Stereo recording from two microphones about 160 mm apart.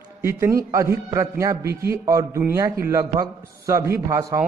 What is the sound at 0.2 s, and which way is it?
A man's voice, 15° right (ahead or behind).